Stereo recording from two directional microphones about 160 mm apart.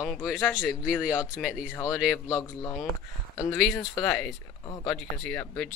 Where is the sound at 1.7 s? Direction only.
20° left (ahead or behind).